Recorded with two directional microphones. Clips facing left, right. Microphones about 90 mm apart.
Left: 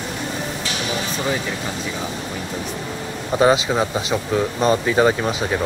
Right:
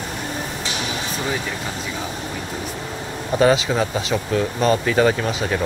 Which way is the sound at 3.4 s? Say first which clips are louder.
Left 1 dB; 20° left (ahead or behind).